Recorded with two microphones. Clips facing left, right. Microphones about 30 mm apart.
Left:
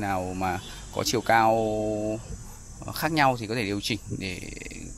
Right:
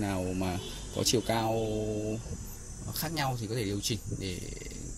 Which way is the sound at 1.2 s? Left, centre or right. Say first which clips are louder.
Left 9 dB; centre.